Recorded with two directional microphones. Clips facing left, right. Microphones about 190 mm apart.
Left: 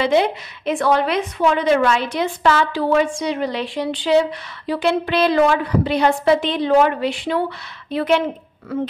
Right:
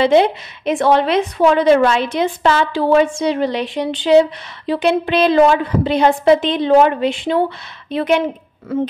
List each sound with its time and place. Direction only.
0.0 s a woman's voice: 25° right (ahead or behind)